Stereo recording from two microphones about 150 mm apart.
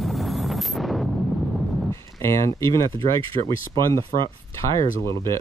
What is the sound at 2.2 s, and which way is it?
Speech, 20° left (ahead or behind).